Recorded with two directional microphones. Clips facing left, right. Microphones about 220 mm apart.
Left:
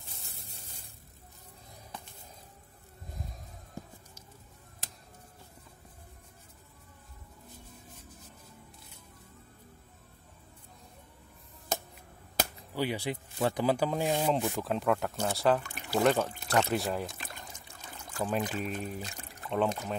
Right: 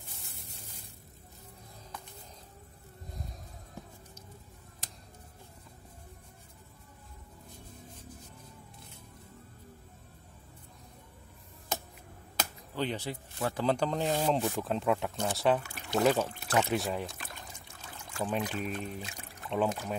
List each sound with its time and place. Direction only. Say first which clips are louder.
12.7 s speech: left 2 dB; 10° left (ahead or behind)
13.1 s speech: left 4 dB; 25° left (ahead or behind)
13.7 s speech: right 2 dB; 5° left (ahead or behind)
18.4 s speech: left 1 dB; 5° left (ahead or behind)